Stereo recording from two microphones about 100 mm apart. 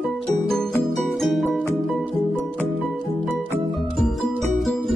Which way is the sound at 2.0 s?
15° left (ahead or behind).